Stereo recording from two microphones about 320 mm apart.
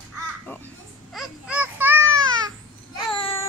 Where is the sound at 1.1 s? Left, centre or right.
Centre.